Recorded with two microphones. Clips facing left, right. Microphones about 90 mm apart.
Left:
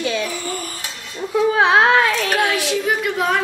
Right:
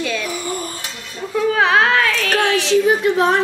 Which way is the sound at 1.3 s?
20° left (ahead or behind).